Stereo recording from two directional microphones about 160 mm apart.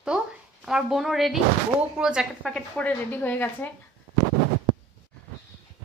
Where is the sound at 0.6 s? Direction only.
5° right (ahead or behind).